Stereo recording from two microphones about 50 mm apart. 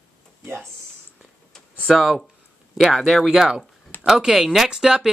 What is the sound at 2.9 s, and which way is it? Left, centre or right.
Speech, centre.